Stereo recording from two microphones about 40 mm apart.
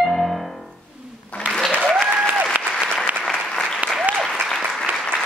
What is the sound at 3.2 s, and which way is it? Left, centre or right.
Applause, centre.